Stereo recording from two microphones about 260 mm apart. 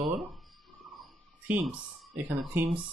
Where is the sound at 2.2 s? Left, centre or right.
Centre.